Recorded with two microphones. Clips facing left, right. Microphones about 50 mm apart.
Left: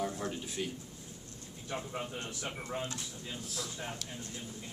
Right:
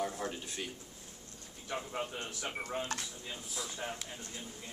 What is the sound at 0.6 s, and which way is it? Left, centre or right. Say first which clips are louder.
Speech: left 4 dB; centre.